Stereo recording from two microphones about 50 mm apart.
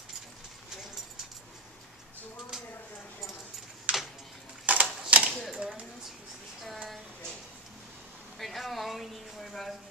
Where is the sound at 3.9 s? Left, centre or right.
Right.